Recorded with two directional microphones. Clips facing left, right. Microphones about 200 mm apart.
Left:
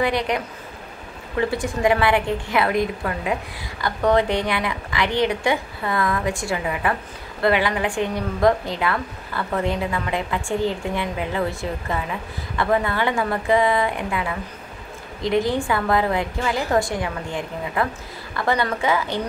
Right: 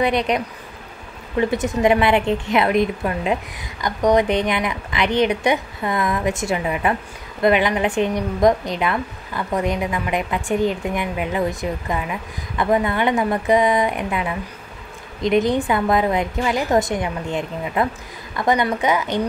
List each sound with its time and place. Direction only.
0.0 s a woman's voice: 20° right (ahead or behind)
1.5 s a woman's voice: 20° right (ahead or behind)